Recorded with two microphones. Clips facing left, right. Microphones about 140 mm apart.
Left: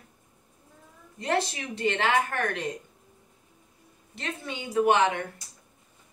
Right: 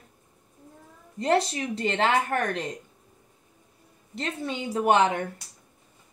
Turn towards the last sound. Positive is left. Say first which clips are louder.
# right 1 dB
turn(degrees=-30)  # may be behind; listen again after turning